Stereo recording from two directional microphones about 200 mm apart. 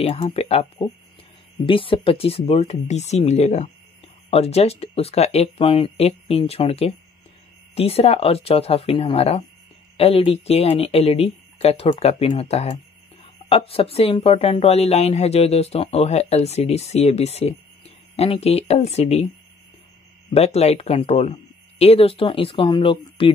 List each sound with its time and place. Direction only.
0.0 s speech: 30° left (ahead or behind)
20.3 s speech: 30° left (ahead or behind)